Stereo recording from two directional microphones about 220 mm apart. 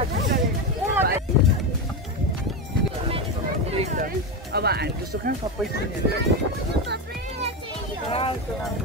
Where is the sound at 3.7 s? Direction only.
30° right (ahead or behind).